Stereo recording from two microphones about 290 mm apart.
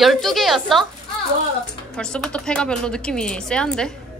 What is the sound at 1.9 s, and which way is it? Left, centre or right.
A woman's voice, centre.